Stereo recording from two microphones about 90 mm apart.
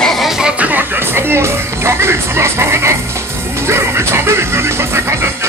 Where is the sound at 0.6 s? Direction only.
20° right (ahead or behind).